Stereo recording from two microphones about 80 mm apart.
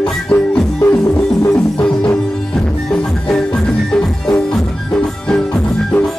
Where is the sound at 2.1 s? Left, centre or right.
Centre.